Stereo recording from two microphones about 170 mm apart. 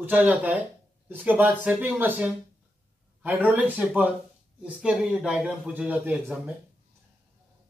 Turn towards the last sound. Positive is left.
turn(degrees=-10)  # may be behind; listen again after turning